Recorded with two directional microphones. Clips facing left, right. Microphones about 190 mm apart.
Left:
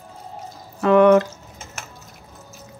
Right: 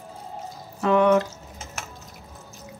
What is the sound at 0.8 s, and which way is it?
Speech, 60° left (ahead or behind).